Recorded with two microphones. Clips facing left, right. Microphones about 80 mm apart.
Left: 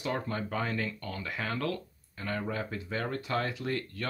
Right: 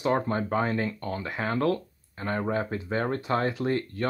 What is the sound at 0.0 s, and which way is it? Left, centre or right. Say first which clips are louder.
Speech: right 8 dB; right.